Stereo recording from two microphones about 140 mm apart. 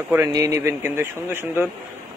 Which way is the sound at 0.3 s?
25° right (ahead or behind).